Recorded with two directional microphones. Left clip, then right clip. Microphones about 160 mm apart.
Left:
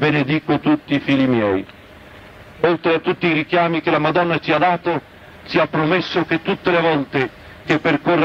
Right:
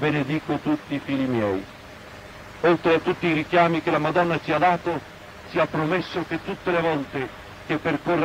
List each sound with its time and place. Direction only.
0.0 s a man's voice: 35° left (ahead or behind)
2.6 s a man's voice: 35° left (ahead or behind)